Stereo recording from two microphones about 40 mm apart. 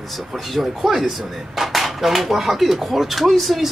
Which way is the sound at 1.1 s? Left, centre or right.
Centre.